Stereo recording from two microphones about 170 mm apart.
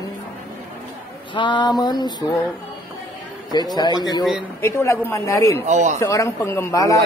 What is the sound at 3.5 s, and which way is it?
Speech, 25° left (ahead or behind).